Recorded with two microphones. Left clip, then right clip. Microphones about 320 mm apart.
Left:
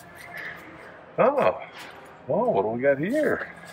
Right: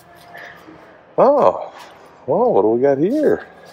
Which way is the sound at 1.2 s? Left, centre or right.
Centre.